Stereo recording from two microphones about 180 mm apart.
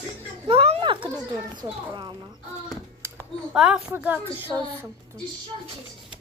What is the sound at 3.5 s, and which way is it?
Speech, 5° right (ahead or behind).